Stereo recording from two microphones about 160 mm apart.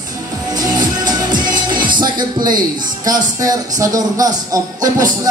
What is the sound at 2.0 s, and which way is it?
Speech, 25° right (ahead or behind).